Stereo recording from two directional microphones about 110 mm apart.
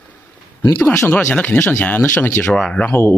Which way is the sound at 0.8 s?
20° left (ahead or behind).